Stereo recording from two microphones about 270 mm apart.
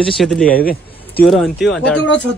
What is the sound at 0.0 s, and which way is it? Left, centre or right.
Speech, centre.